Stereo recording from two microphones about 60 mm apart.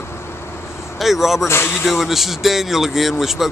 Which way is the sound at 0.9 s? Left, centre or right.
Centre.